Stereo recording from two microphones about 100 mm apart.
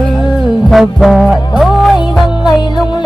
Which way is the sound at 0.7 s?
Centre (ahead or behind).